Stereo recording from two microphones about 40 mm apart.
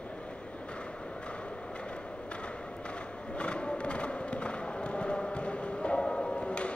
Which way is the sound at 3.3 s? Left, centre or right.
Left.